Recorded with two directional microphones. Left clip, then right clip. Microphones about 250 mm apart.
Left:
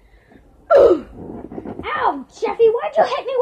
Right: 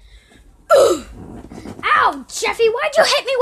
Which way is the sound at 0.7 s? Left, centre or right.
Right.